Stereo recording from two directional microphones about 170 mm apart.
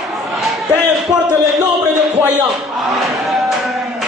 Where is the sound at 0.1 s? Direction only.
Centre (ahead or behind).